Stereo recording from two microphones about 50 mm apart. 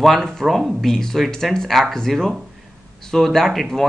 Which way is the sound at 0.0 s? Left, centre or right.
Centre.